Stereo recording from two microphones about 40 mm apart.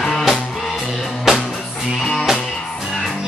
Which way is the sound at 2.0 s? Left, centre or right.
Centre.